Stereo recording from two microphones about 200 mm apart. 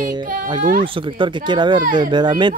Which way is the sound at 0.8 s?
25° right (ahead or behind).